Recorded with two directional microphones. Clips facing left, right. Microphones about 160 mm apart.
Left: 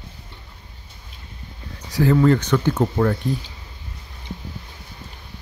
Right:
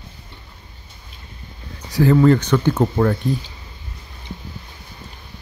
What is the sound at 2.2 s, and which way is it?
Speech, 30° right (ahead or behind).